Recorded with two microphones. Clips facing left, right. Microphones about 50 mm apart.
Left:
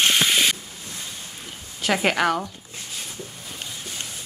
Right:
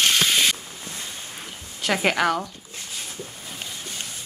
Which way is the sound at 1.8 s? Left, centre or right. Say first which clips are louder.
Even; centre.